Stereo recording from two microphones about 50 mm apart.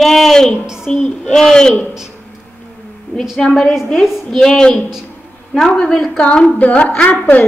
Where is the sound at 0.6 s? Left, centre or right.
Centre.